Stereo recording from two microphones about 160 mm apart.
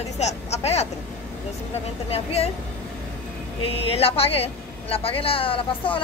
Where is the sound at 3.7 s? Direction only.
35° left (ahead or behind).